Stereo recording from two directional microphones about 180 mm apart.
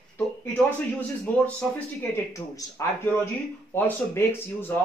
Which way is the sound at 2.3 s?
15° left (ahead or behind).